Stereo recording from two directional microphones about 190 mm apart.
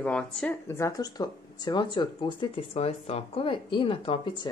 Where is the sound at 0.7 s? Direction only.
15° left (ahead or behind).